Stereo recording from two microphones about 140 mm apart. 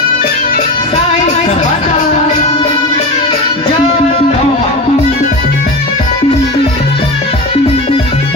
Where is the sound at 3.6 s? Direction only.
40° left (ahead or behind).